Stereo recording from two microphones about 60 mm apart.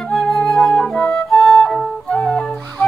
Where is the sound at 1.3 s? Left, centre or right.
Centre.